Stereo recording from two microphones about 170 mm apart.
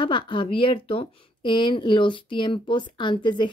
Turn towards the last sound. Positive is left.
turn(degrees=25)  # may be behind; listen again after turning